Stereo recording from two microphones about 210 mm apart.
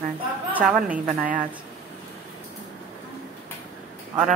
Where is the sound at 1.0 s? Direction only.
40° right (ahead or behind).